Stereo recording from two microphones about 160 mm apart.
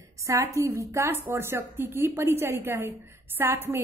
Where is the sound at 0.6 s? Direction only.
20° right (ahead or behind).